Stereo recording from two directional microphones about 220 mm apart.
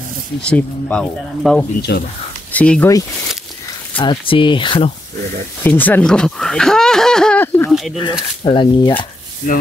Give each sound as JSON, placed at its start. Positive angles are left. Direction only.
{"t": 0.4, "sound": "speech", "side_deg": 5}
{"t": 1.8, "sound": "speech", "side_deg": 45}
{"t": 2.5, "sound": "speech", "side_deg": 5}
{"t": 4.0, "sound": "speech", "side_deg": 25}
{"t": 5.6, "sound": "speech", "side_deg": 10}
{"t": 8.0, "sound": "speech", "side_deg": 20}